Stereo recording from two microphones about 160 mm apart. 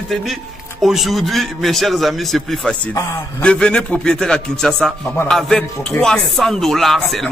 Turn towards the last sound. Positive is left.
turn(degrees=0)  # may be behind; listen again after turning